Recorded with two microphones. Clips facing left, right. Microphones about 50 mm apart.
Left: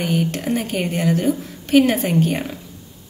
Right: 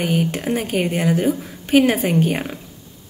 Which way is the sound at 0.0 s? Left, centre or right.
Centre.